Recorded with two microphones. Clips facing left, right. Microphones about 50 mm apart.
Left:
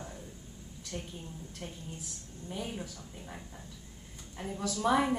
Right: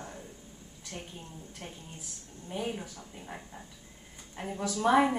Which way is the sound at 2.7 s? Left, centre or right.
Centre.